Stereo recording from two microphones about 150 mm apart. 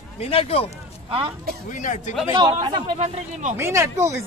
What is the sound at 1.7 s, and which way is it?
Speech, 55° left (ahead or behind).